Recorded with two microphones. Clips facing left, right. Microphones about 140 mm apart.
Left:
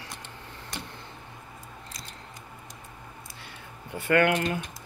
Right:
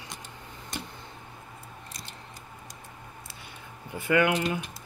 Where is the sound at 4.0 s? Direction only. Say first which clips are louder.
Left 1 dB; 10° right (ahead or behind).